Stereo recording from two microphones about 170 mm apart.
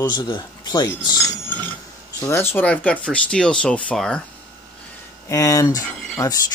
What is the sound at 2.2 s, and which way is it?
Speech, 15° left (ahead or behind).